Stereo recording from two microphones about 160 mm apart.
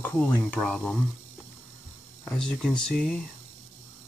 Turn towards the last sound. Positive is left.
turn(degrees=5)  # may be behind; listen again after turning